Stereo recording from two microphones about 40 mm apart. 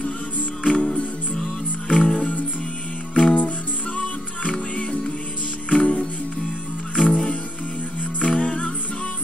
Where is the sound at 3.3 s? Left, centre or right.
Left.